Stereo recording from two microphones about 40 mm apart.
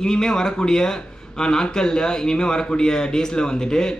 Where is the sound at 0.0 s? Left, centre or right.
Centre.